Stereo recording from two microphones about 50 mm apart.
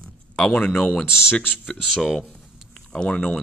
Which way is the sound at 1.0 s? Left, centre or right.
Centre.